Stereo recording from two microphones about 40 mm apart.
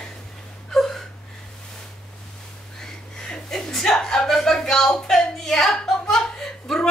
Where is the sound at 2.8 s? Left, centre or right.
Centre.